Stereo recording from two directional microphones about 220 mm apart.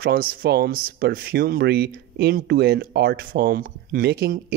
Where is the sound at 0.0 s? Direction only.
45° right (ahead or behind).